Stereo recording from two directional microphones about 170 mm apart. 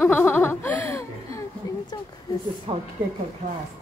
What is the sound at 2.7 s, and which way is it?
Speech, 35° right (ahead or behind).